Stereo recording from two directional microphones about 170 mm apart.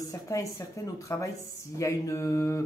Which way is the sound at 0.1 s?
20° left (ahead or behind).